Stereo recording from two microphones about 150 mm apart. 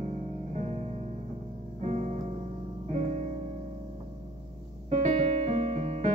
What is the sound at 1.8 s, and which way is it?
Music, 50° right (ahead or behind).